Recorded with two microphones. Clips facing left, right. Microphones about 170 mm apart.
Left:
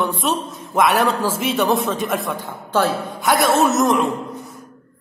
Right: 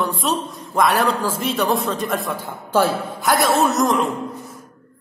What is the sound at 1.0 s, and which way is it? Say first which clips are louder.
Speech: left 1 dB; 25° left (ahead or behind).